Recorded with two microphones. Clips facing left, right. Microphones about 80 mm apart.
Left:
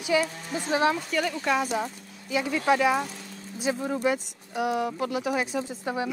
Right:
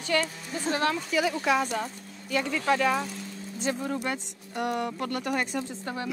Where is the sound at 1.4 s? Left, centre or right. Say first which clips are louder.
Left 1 dB; centre.